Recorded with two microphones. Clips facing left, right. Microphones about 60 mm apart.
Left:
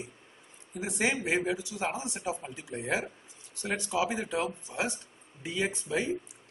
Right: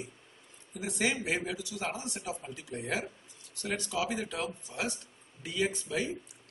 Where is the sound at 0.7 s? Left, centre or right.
Left.